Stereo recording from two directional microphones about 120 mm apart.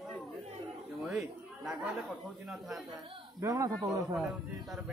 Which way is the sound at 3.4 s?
30° right (ahead or behind).